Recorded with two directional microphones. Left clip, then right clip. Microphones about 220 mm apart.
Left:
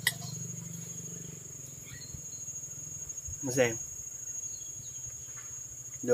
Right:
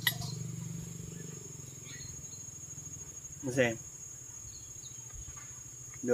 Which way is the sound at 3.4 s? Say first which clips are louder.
Left 2 dB; 35° left (ahead or behind).